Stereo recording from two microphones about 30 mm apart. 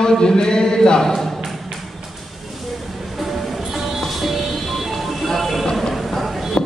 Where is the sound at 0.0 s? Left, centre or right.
Left.